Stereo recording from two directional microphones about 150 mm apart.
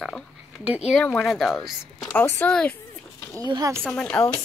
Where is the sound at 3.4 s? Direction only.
25° right (ahead or behind).